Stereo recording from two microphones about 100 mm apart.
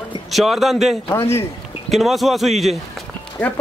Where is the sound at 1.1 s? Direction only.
30° left (ahead or behind).